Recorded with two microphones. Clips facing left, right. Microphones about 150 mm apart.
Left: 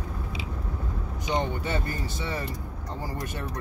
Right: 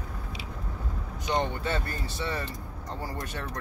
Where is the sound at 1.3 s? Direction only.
15° left (ahead or behind).